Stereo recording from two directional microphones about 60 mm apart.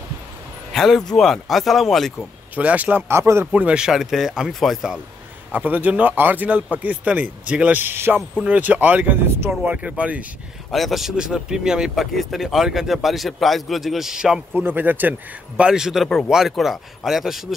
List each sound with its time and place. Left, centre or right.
0.7 s speech: centre
2.5 s speech: right
3.1 s speech: right
3.5 s speech: centre
3.9 s speech: centre
5.5 s speech: right
7.7 s a man's voice: right
8.5 s speech: right
10.7 s speech: centre
11.9 s speech: centre
14.5 s a man's voice: right
15.5 s speech: centre